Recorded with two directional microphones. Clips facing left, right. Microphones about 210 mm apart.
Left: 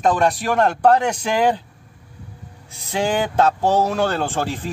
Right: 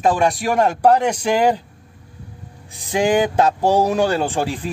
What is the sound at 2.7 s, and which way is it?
Speech, 15° right (ahead or behind).